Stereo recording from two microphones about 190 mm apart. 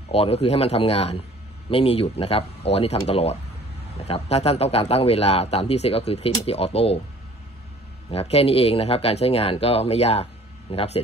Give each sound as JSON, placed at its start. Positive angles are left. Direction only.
{"t": 0.1, "sound": "speech", "side_deg": 30}
{"t": 8.1, "sound": "speech", "side_deg": 30}